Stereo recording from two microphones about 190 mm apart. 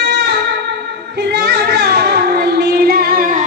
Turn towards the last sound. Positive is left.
turn(degrees=-50)  # may be behind; listen again after turning